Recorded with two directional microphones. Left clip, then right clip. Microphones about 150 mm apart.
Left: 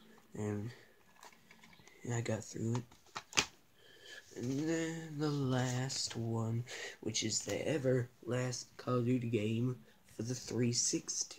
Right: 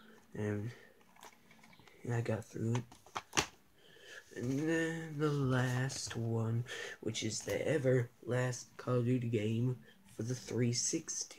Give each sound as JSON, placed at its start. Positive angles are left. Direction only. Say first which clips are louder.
{"t": 0.4, "sound": "speech", "louder": "right 2 dB", "side_deg": -10}
{"t": 2.0, "sound": "speech", "louder": "right 1 dB", "side_deg": -5}
{"t": 2.7, "sound": "a sound", "louder": "right 2 dB", "side_deg": -50}
{"t": 4.0, "sound": "speech", "louder": "right 1 dB", "side_deg": -10}